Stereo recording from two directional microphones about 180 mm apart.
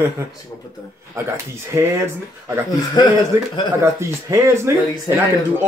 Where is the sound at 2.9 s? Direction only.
25° left (ahead or behind).